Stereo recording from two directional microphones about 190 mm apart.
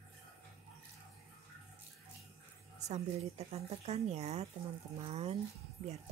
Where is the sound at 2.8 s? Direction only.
35° right (ahead or behind).